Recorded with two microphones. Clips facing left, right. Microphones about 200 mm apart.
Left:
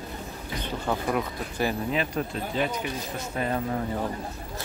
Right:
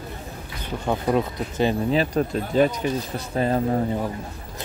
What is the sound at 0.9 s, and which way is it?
Speech, 20° right (ahead or behind).